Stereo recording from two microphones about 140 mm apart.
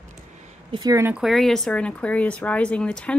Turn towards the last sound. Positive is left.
turn(degrees=5)  # may be behind; listen again after turning